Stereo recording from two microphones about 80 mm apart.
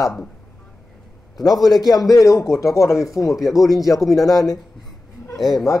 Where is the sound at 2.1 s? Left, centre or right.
Left.